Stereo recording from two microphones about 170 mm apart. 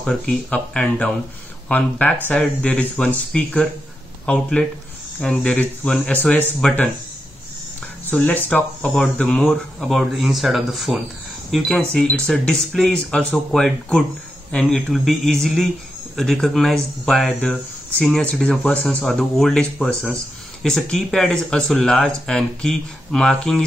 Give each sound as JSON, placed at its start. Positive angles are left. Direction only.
{"t": 0.0, "sound": "speech", "side_deg": 5}
{"t": 8.1, "sound": "speech", "side_deg": 10}